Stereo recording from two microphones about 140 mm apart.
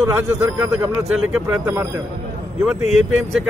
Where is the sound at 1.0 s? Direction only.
5° right (ahead or behind).